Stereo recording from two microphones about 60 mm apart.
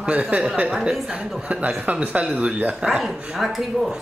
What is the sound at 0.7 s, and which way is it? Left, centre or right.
A woman's voice, centre.